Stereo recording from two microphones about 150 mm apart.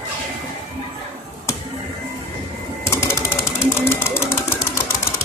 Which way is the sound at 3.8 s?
15° left (ahead or behind).